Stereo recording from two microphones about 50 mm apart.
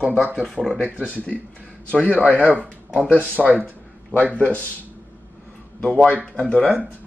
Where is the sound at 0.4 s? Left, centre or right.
Centre.